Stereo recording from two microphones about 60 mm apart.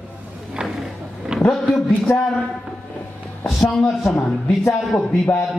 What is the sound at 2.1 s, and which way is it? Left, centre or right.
Speech, left.